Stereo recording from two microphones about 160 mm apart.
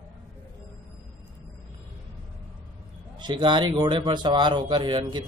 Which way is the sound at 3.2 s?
30° right (ahead or behind).